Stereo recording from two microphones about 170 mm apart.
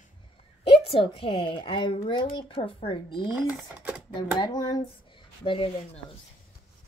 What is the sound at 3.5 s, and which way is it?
Speech, 10° right (ahead or behind).